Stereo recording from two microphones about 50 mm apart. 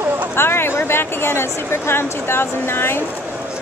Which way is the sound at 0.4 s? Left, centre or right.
Left.